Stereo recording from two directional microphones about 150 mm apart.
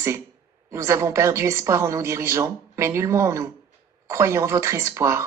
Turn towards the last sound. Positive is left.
turn(degrees=-20)  # may be behind; listen again after turning